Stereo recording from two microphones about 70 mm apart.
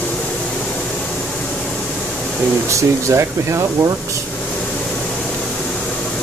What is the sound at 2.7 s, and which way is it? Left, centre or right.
Speech, right.